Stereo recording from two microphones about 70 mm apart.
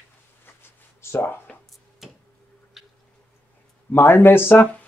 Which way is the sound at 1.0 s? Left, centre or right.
Left.